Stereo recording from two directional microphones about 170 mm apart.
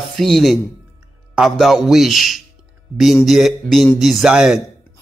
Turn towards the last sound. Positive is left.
turn(degrees=-5)  # may be behind; listen again after turning